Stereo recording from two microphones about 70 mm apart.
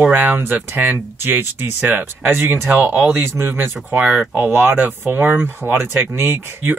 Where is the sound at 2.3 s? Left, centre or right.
Right.